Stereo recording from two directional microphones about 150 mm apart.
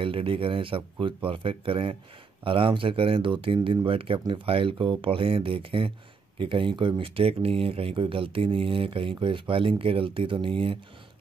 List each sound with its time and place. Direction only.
0.0 s speech: 35° right (ahead or behind)